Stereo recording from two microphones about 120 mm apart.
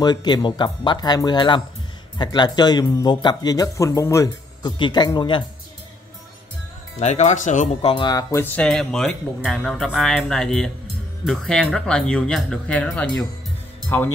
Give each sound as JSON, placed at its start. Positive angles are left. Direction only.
{"t": 0.0, "sound": "speech", "side_deg": 35}
{"t": 4.7, "sound": "speech", "side_deg": 40}
{"t": 7.0, "sound": "speech", "side_deg": 75}
{"t": 7.8, "sound": "speech", "side_deg": 45}
{"t": 8.1, "sound": "speech", "side_deg": 30}
{"t": 8.4, "sound": "speech", "side_deg": 10}